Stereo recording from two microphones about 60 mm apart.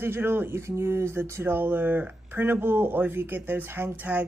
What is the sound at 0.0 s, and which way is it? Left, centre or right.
Speech, right.